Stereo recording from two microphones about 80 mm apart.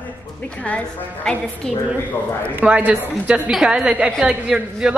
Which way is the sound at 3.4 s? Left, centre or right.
Centre.